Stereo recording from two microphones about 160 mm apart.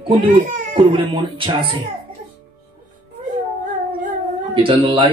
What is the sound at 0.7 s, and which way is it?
A man's voice, 30° right (ahead or behind).